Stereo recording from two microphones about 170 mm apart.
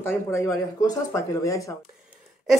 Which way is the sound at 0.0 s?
15° left (ahead or behind).